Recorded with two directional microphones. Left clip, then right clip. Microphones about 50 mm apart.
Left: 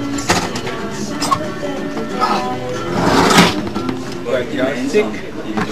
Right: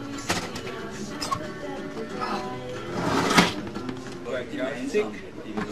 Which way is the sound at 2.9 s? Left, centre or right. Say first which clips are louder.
Left 10 dB; centre.